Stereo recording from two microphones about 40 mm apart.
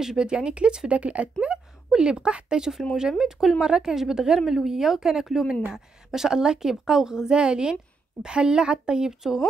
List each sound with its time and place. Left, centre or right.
0.0 s speech: centre; by 1.3 s right
1.9 s a woman's voice: centre